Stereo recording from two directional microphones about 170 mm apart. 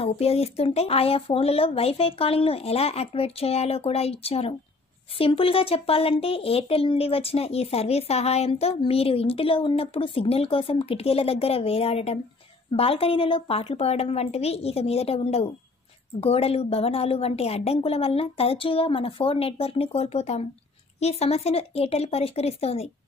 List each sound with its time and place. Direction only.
0.0 s speech: 35° left (ahead or behind)